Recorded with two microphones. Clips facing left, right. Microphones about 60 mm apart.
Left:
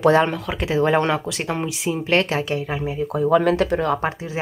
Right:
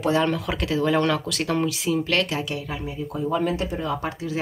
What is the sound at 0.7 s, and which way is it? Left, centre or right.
Speech, left.